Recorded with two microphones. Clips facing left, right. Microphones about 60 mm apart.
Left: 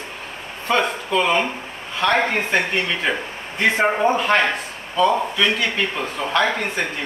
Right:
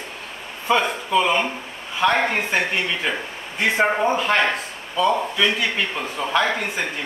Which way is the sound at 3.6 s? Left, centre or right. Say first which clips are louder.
Left 1 dB; centre.